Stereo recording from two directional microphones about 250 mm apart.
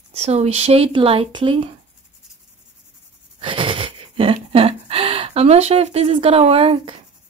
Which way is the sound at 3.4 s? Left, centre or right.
Centre.